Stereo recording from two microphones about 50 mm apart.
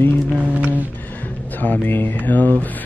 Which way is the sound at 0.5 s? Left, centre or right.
Right.